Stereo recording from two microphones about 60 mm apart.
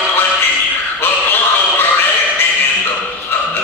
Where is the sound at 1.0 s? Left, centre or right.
Left.